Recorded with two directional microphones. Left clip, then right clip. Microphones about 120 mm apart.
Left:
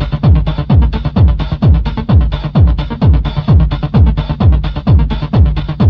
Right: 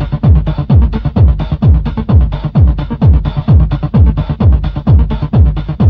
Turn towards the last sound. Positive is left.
turn(degrees=30)  # may be behind; listen again after turning